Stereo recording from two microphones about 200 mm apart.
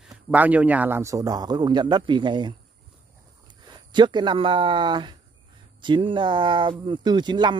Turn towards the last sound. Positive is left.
turn(degrees=-20)  # may be behind; listen again after turning